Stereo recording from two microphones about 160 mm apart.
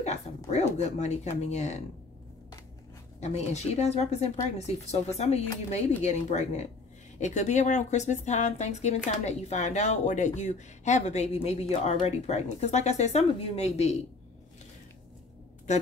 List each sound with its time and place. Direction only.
0.0 s speech: 45° left (ahead or behind)
3.2 s speech: 45° left (ahead or behind)
15.7 s speech: 50° left (ahead or behind)